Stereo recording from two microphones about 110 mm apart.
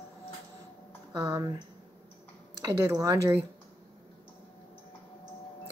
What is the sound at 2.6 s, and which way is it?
Speech, 25° right (ahead or behind).